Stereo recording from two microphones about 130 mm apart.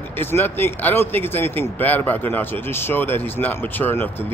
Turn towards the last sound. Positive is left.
turn(degrees=15)  # may be behind; listen again after turning